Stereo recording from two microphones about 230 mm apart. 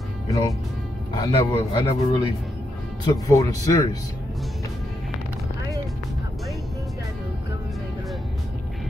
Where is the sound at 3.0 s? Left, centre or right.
Centre.